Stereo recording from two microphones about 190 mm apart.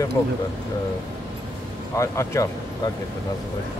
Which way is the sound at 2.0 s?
15° left (ahead or behind).